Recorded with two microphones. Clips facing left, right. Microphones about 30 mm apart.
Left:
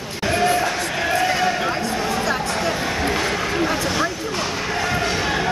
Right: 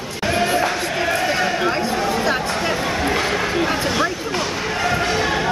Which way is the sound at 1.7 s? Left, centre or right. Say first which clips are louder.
Right 2 dB; right.